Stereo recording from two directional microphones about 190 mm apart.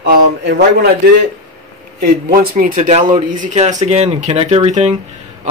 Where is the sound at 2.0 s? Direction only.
50° right (ahead or behind).